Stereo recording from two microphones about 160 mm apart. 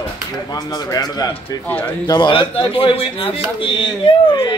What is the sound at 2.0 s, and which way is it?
Speech, 25° left (ahead or behind).